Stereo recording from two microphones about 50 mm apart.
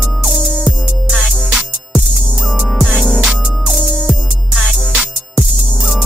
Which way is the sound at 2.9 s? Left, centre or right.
Centre.